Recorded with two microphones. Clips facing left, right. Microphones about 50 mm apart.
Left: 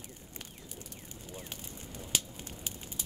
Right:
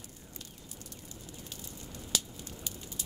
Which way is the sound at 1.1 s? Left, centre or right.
Left.